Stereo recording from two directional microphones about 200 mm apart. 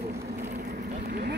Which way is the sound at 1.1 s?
50° right (ahead or behind).